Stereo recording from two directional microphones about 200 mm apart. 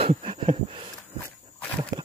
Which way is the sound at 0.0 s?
25° right (ahead or behind).